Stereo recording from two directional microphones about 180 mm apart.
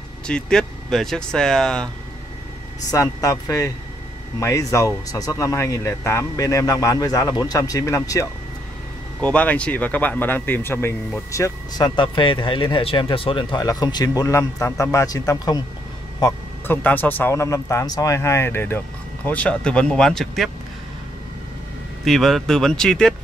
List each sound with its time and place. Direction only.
0.3 s speech: 5° left (ahead or behind)
2.9 s a man's voice: 20° left (ahead or behind); by 20.5 s centre (ahead or behind)
22.0 s speech: centre (ahead or behind)